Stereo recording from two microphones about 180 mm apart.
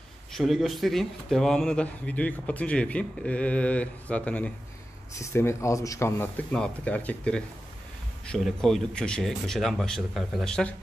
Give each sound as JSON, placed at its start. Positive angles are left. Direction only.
{"t": 0.3, "sound": "speech", "side_deg": 0}